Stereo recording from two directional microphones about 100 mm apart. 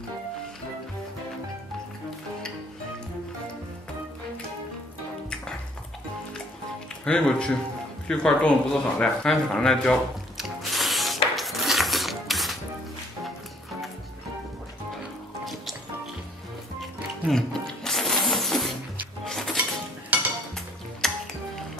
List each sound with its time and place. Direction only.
7.1 s speech: 10° left (ahead or behind)
10.3 s music: centre (ahead or behind)
11.3 s a sound: centre (ahead or behind)
17.3 s music: 5° left (ahead or behind)
20.1 s dishes: 15° right (ahead or behind)
21.0 s music: 5° left (ahead or behind)